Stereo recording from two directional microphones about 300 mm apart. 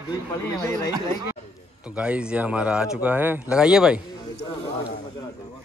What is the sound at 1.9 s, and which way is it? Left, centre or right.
Speech, centre.